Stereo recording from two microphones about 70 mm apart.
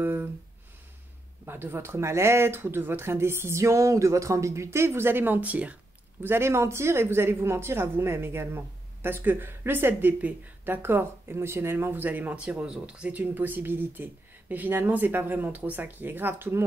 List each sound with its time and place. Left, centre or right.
0.0 s a sound: right
1.4 s speech: right
6.2 s speech: right